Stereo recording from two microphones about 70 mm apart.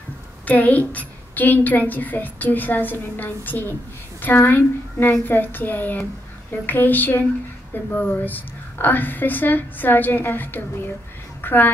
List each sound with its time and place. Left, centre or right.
0.5 s a woman's voice: left